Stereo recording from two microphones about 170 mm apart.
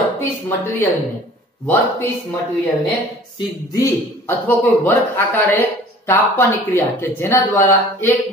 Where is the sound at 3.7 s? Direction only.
15° left (ahead or behind).